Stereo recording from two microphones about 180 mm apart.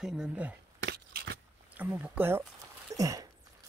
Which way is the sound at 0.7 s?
65° right (ahead or behind).